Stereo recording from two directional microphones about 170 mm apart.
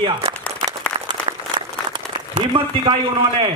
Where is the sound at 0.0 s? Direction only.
35° right (ahead or behind).